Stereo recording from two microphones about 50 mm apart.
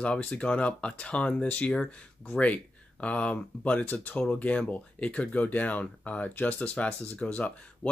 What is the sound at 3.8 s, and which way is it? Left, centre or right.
Speech, left.